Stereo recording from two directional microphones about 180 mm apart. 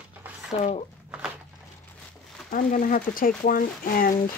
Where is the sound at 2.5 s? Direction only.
45° left (ahead or behind).